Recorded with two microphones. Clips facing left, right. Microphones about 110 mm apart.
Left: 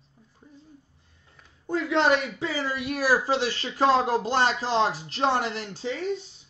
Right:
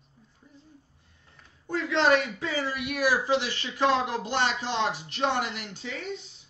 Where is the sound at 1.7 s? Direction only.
25° left (ahead or behind).